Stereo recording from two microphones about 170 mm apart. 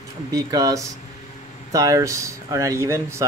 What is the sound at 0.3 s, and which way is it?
Speech, 20° right (ahead or behind).